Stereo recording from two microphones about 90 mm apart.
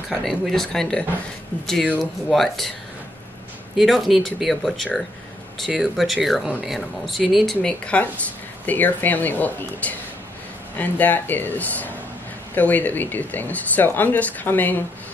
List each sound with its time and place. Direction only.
0.1 s speech: centre (ahead or behind)
2.3 s speech: centre (ahead or behind)
3.7 s speech: centre (ahead or behind)
7.6 s speech: 15° left (ahead or behind)